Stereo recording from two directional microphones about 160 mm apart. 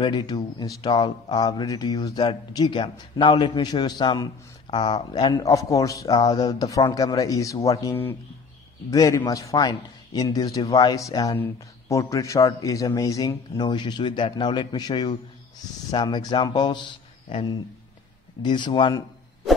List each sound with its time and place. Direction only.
0.0 s speech: 25° left (ahead or behind)